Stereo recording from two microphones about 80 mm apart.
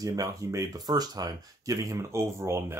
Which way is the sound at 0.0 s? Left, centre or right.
Right.